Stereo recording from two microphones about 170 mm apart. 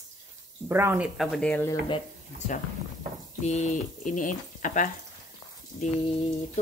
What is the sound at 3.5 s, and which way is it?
Speech, 45° left (ahead or behind).